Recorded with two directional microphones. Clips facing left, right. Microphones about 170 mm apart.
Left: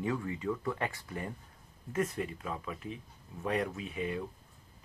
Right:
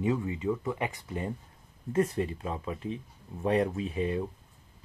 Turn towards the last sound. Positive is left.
turn(degrees=-30)  # may be behind; listen again after turning